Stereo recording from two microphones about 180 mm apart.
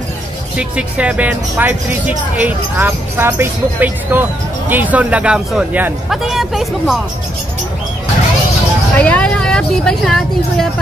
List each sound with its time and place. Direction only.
0.6 s speech: 5° right (ahead or behind)
8.9 s speech: 5° left (ahead or behind)